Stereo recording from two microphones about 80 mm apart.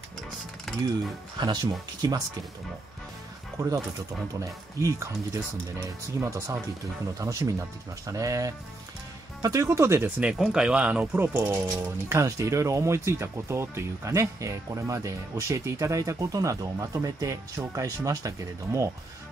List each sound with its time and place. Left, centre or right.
1.4 s speech: right
3.5 s speech: right
10.3 s speech: centre
11.1 s speech: right
11.6 s speech: right